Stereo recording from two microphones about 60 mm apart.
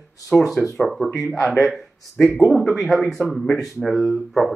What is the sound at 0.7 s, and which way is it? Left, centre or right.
A man's voice, centre.